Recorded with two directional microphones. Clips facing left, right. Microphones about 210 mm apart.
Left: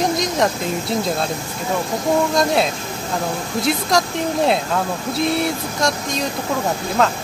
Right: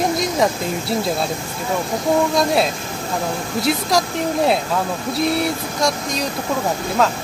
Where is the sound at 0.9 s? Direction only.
5° right (ahead or behind).